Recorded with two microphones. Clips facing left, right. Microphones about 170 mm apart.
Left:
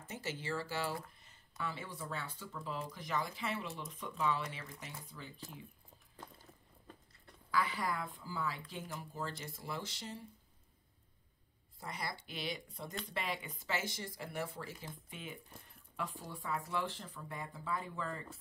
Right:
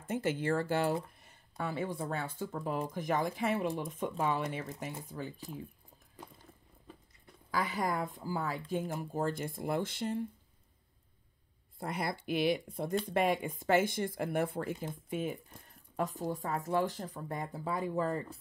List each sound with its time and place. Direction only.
0.0 s speech: 55° right (ahead or behind)
7.5 s speech: 45° right (ahead or behind)
11.8 s speech: 55° right (ahead or behind)